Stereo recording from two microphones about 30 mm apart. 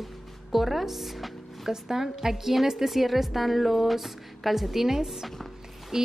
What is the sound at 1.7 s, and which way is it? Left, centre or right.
Speech, centre.